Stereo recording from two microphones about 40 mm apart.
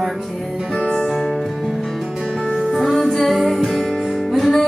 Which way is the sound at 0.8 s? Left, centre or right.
Left.